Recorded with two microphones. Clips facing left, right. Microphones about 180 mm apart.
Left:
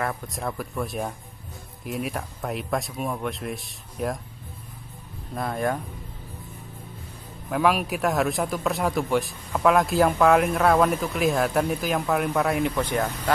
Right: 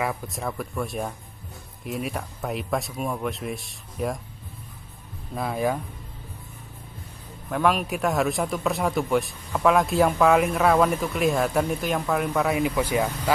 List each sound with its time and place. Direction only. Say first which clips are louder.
0.0 s speech: right 1 dB; centre (ahead or behind)
5.3 s speech: right 1 dB; 5° right (ahead or behind)
7.4 s speech: left 1 dB; 5° left (ahead or behind)